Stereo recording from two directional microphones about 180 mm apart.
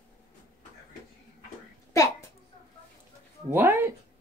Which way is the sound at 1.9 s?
15° left (ahead or behind).